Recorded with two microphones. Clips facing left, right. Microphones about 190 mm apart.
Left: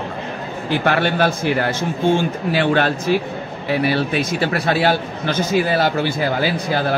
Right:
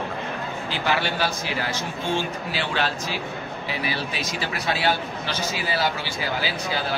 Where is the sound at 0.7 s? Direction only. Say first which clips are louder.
Left 8 dB; 55° left (ahead or behind).